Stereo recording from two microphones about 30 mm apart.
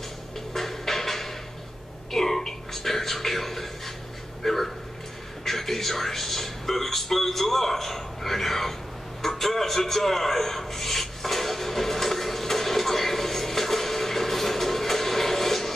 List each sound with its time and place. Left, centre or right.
0.5 s music: centre
2.1 s a sound: centre
4.4 s speech: centre
9.2 s rub: centre